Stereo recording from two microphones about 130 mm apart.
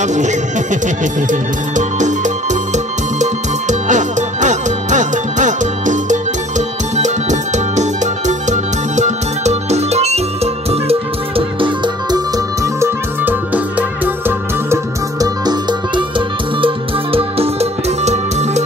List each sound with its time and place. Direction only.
0.0 s music: 65° right (ahead or behind); by 12.2 s 40° right (ahead or behind)
12.8 s music: 15° right (ahead or behind)
16.6 s music: 45° right (ahead or behind)